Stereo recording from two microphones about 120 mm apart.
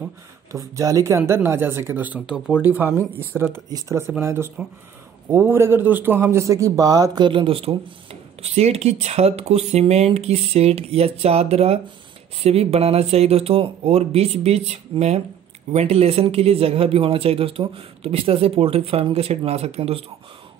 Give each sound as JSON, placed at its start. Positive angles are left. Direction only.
{"t": 0.5, "sound": "speech", "side_deg": -25}
{"t": 2.1, "sound": "speech", "side_deg": -5}